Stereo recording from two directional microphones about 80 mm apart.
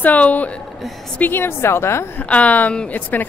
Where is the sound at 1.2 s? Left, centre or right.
Left.